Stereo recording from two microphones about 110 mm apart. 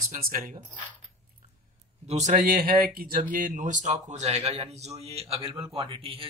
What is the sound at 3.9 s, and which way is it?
A man's voice, 90° right.